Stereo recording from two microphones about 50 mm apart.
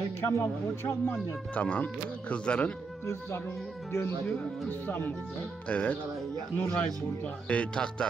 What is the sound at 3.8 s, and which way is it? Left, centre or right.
Speech, left.